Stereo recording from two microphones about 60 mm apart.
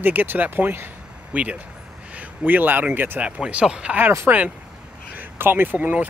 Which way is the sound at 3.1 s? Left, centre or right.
Centre.